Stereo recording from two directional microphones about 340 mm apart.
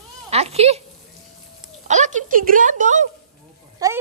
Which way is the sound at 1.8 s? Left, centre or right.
Right.